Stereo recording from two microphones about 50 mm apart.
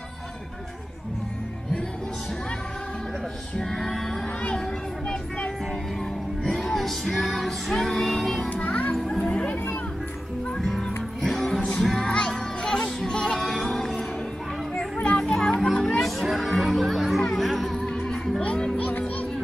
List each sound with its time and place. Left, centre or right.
3.5 s music: centre
4.6 s a sound: centre
6.4 s music: centre
7.7 s music: centre
8.5 s children playing: left
8.9 s children playing: centre
9.3 s a sound: left
10.6 s music: centre
12.1 s music: centre
15.1 s music: centre
17.8 s music: centre
18.4 s music: left
18.8 s music: left